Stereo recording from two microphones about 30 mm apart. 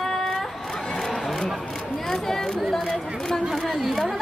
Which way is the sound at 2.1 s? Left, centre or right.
Centre.